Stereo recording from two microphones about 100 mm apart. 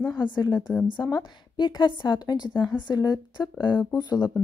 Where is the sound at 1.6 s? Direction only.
50° left (ahead or behind).